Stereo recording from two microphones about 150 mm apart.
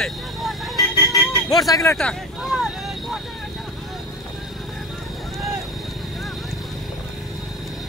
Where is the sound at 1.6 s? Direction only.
20° left (ahead or behind).